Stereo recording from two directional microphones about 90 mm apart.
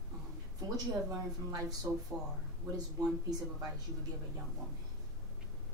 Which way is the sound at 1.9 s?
20° right (ahead or behind).